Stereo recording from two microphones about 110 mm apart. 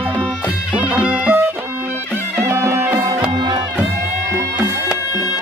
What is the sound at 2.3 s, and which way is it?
Music, 25° right (ahead or behind).